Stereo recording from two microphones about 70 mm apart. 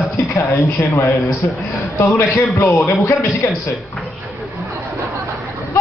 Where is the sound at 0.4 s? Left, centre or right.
Left.